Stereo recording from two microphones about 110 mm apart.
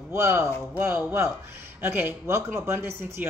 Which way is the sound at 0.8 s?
15° right (ahead or behind).